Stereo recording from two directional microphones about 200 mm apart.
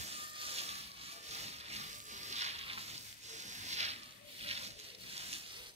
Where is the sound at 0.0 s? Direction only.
30° right (ahead or behind).